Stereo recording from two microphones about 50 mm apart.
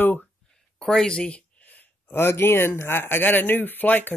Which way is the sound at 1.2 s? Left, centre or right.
Left.